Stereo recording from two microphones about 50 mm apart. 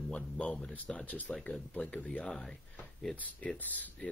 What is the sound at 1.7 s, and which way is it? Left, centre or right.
Speech, left.